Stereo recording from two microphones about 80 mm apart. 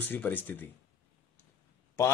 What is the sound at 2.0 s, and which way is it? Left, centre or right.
Speech, left.